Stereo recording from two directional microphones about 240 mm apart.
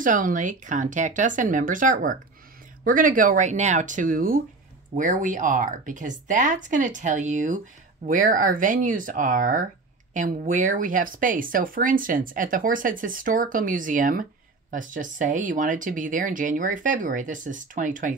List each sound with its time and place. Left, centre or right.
0.0 s speech: right